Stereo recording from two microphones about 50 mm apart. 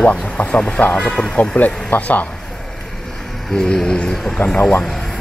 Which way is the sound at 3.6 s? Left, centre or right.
Centre.